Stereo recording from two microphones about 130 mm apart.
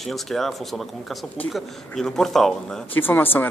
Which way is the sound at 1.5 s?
5° left (ahead or behind).